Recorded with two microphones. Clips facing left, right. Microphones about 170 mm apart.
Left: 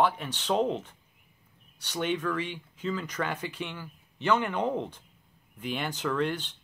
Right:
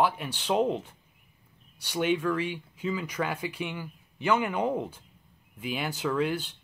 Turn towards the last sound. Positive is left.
turn(degrees=-10)  # may be behind; listen again after turning